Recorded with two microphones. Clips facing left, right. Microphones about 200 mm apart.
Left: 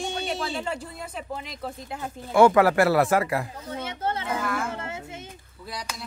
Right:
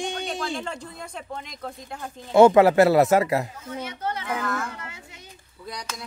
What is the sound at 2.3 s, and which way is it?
Speech, 20° right (ahead or behind).